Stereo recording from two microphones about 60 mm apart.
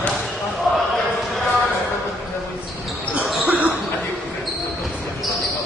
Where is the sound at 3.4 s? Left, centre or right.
Right.